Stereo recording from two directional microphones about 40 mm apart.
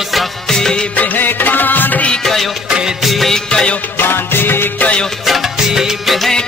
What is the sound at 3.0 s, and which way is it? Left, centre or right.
Music of bollywood, centre.